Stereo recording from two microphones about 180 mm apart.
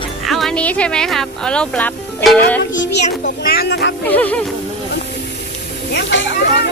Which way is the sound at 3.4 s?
60° left (ahead or behind).